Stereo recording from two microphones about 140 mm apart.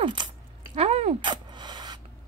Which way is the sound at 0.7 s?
45° right (ahead or behind).